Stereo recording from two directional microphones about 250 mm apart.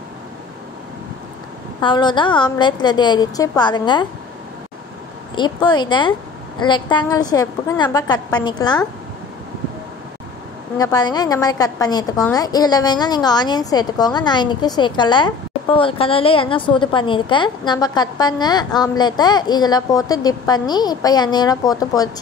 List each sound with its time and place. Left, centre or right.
1.8 s a woman's voice: centre
5.3 s a woman's voice: centre
10.8 s a woman's voice: centre